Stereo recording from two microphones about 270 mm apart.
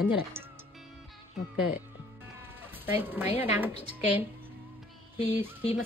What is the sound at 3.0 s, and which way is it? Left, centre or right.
Speech, centre.